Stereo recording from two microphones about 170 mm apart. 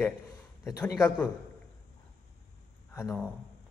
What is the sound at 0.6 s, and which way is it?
Speech, 5° left (ahead or behind).